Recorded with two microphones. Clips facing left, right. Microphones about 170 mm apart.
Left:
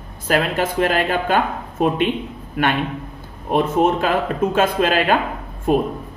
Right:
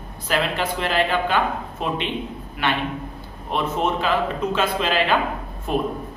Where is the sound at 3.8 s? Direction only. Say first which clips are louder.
Left 4 dB; 50° left (ahead or behind).